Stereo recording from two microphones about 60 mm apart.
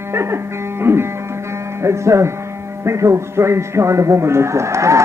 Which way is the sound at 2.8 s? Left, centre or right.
Right.